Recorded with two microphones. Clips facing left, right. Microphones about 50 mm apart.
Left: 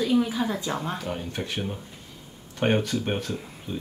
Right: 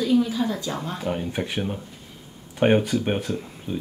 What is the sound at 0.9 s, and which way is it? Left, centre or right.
Speech, centre.